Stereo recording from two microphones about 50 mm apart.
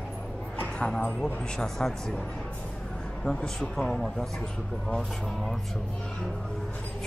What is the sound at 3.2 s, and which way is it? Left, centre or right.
A man's voice, centre.